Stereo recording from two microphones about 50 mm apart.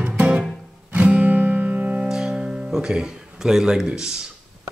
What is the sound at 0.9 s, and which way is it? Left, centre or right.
Music, right.